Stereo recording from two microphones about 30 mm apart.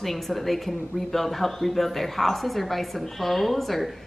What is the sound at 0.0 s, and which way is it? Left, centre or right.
Speech, centre.